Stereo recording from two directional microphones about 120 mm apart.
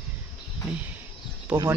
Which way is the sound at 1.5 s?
10° right (ahead or behind).